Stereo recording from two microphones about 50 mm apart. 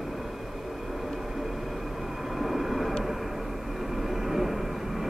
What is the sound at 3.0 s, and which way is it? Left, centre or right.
Vehicle, centre.